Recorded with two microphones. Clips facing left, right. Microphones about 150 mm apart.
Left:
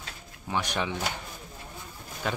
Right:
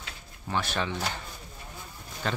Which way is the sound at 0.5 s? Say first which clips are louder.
Even; 15° left (ahead or behind).